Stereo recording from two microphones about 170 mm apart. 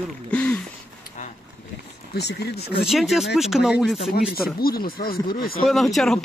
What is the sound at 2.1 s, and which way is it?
Speech, 75° left (ahead or behind).